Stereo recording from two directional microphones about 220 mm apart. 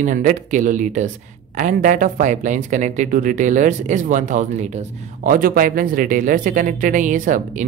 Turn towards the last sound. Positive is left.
turn(degrees=-35)  # may be behind; listen again after turning